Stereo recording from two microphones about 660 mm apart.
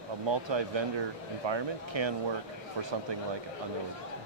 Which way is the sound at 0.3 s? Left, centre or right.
Right.